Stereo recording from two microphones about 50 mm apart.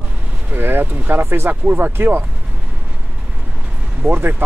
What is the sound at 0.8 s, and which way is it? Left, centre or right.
Speech, right.